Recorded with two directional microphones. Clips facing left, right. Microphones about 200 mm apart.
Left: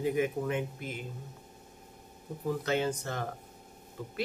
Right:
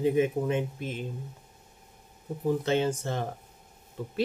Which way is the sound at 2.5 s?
25° right (ahead or behind).